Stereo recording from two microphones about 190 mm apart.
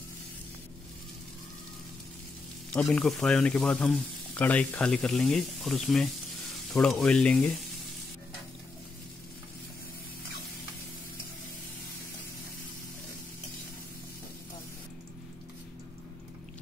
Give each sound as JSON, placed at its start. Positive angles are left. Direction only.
{"t": 2.7, "sound": "speech", "side_deg": 5}